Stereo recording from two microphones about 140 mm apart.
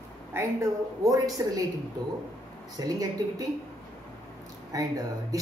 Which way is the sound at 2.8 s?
25° right (ahead or behind).